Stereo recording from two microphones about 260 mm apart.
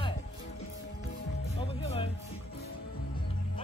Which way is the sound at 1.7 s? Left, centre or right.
Left.